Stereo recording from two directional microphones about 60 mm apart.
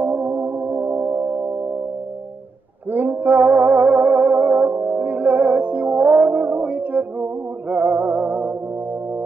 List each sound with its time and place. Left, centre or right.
0.0 s music: right
2.9 s music: right